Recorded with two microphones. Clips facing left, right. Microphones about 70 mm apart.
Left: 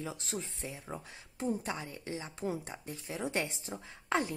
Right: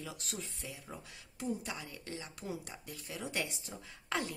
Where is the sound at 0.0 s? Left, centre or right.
Left.